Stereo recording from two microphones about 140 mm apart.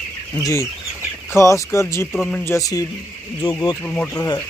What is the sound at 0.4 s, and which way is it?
Speech, 20° left (ahead or behind).